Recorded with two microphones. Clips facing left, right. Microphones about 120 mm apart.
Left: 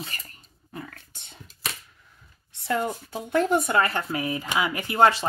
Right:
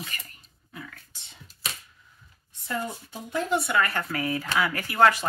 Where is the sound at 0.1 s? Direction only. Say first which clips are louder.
Even; 35° left (ahead or behind).